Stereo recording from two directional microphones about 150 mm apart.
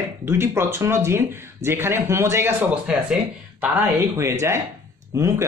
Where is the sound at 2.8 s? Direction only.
5° right (ahead or behind).